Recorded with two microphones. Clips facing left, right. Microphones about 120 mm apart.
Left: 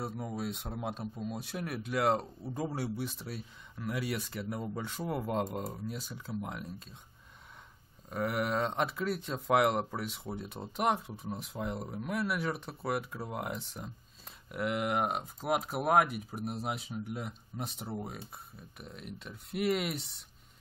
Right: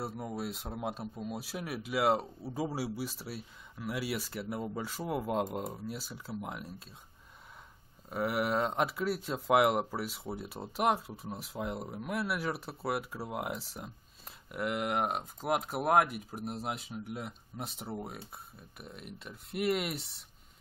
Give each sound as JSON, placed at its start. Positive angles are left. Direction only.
{"t": 0.0, "sound": "speech", "side_deg": 0}
{"t": 8.1, "sound": "speech", "side_deg": -5}